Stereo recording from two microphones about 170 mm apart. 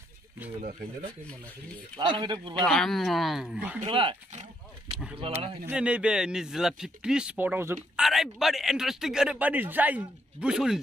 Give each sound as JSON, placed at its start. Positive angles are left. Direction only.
{"t": 0.6, "sound": "speech", "side_deg": -50}
{"t": 2.0, "sound": "speech", "side_deg": -25}
{"t": 2.6, "sound": "a man's voice", "side_deg": 5}
{"t": 3.8, "sound": "speech", "side_deg": -30}
{"t": 4.9, "sound": "a man's voice", "side_deg": -5}
{"t": 8.0, "sound": "a man's voice", "side_deg": 0}